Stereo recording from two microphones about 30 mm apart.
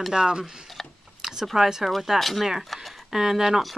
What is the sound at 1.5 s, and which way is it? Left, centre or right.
Speech, centre.